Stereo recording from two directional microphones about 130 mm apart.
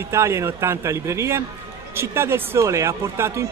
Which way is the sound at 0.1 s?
20° right (ahead or behind).